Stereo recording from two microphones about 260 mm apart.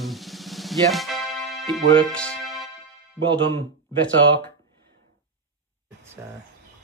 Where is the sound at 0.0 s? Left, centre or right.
Centre.